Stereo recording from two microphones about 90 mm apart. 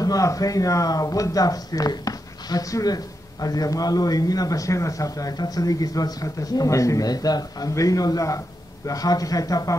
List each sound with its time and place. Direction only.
0.0 s speech: 40° left (ahead or behind)